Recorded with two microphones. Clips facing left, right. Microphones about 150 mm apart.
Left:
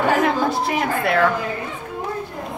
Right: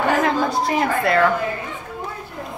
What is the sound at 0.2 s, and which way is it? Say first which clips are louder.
A woman's voice: even; centre (ahead or behind).